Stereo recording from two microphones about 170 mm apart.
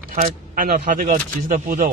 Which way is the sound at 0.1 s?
55° right (ahead or behind).